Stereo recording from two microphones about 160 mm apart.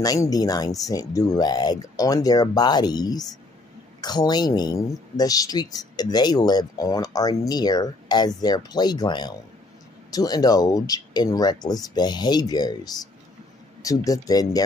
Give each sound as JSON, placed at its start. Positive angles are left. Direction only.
{"t": 0.0, "sound": "speech", "side_deg": 25}